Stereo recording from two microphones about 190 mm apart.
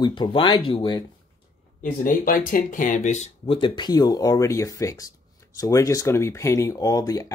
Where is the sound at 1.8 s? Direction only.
45° left (ahead or behind).